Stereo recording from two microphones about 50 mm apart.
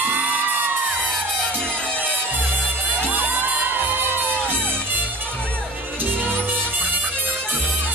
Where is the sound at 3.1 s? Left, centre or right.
Right.